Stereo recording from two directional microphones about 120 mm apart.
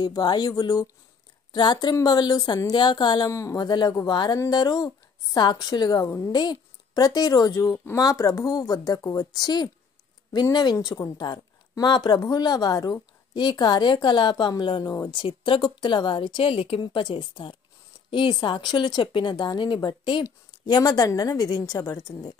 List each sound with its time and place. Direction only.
0.0 s speech: 35° left (ahead or behind)